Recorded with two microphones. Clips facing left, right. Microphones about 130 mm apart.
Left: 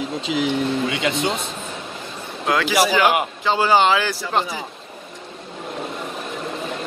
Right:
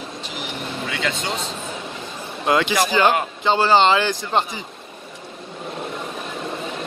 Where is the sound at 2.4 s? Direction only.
Centre (ahead or behind).